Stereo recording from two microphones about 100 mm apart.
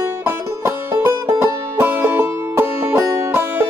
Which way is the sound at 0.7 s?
25° right (ahead or behind).